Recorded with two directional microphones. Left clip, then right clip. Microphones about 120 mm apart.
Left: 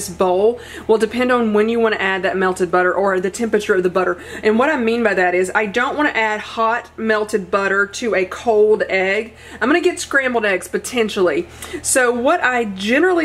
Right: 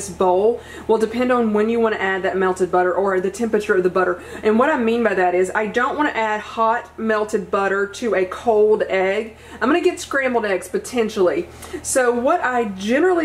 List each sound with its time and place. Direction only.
0.8 s a woman's voice: 40° left (ahead or behind)
8.5 s speech: 25° left (ahead or behind)
8.8 s a woman's voice: 40° left (ahead or behind)